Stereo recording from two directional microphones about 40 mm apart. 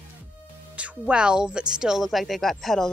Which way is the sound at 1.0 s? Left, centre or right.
Right.